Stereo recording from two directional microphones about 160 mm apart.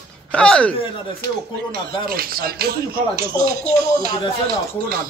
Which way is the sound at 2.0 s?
65° right (ahead or behind).